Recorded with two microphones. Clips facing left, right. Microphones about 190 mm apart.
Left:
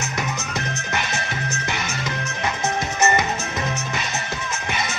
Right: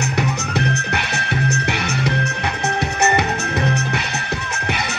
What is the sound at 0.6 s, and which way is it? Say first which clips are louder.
Music: right 6 dB; 65° right (ahead or behind).